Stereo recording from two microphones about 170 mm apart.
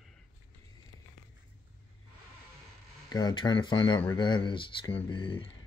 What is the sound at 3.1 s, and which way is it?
Speech, 25° left (ahead or behind).